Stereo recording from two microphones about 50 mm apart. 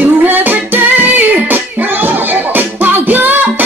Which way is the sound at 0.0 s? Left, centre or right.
Right.